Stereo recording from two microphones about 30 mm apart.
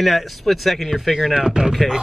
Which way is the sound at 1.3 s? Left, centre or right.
Right.